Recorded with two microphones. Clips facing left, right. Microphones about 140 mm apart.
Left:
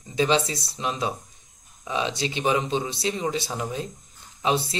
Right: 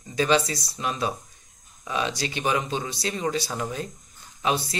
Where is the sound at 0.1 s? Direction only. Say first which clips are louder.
Even; 20° left (ahead or behind).